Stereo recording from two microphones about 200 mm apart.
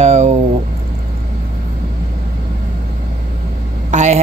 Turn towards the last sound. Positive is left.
turn(degrees=-35)  # may be behind; listen again after turning